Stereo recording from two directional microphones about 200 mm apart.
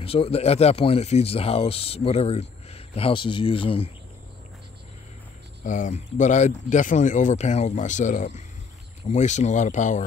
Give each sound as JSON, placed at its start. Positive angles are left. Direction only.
{"t": 0.0, "sound": "speech", "side_deg": 30}
{"t": 5.7, "sound": "speech", "side_deg": 40}